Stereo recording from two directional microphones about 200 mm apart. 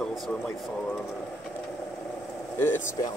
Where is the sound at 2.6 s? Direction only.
10° left (ahead or behind).